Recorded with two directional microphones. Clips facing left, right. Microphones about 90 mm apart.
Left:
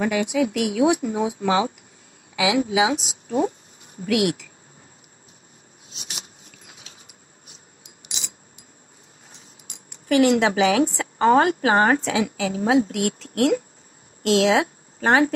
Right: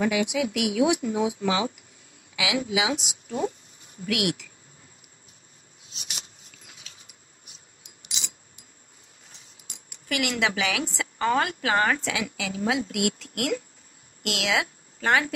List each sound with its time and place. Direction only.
0.0 s a woman's voice: 35° left (ahead or behind)
5.9 s a sound: 35° left (ahead or behind)
9.8 s a woman's voice: 35° left (ahead or behind)